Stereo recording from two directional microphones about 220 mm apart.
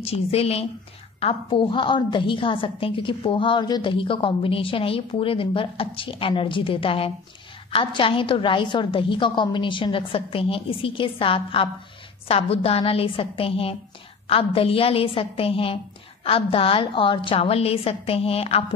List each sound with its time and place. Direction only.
0.0 s a woman's voice: 25° left (ahead or behind)